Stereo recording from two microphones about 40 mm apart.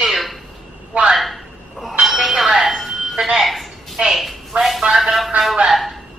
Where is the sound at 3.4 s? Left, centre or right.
Centre.